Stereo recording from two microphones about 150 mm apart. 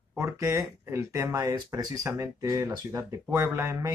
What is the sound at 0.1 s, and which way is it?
Speech, 20° right (ahead or behind).